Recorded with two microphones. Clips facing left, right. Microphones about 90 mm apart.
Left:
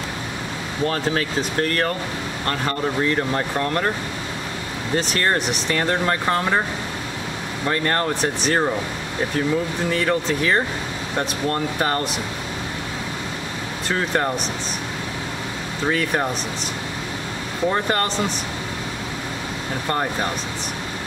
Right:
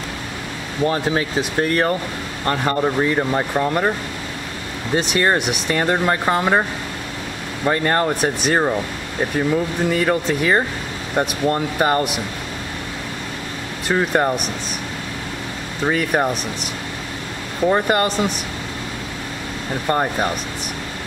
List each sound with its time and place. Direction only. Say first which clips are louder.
0.8 s speech: right 3 dB; 15° right (ahead or behind)
5.1 s speech: right 5 dB; 15° right (ahead or behind)
7.6 s speech: right 4 dB; 15° right (ahead or behind)
9.9 s speech: right 1 dB; 15° right (ahead or behind)
13.8 s speech: right 4 dB; 15° right (ahead or behind)
15.9 s speech: right 3 dB; 15° right (ahead or behind)
17.6 s speech: right 4 dB; 15° right (ahead or behind)
19.9 s speech: right 4 dB; 15° right (ahead or behind)